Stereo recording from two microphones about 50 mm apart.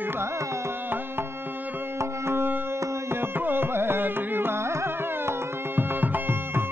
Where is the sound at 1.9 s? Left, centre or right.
Right.